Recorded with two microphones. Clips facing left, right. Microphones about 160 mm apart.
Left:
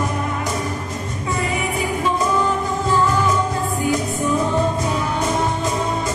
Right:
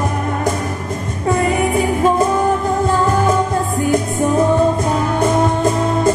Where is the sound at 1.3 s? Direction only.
50° right (ahead or behind).